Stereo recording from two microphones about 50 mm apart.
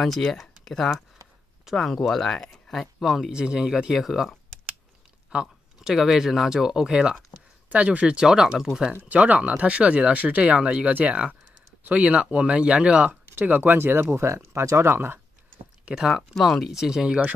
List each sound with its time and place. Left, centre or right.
0.0 s speech: centre
3.3 s speech: centre
3.9 s speech: centre
5.3 s speech: right
5.8 s speech: centre
7.7 s speech: right
9.1 s speech: right
10.9 s speech: right
13.3 s speech: right
13.7 s speech: right
16.1 s speech: centre